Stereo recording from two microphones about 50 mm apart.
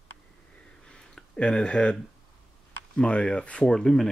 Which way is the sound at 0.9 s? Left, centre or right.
Centre.